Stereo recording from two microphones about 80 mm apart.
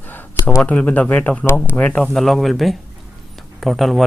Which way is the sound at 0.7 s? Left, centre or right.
Centre.